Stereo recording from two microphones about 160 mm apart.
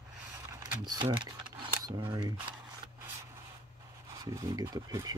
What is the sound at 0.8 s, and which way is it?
Camera, 25° right (ahead or behind).